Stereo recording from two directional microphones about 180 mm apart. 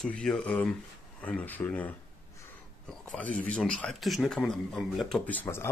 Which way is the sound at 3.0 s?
5° left (ahead or behind).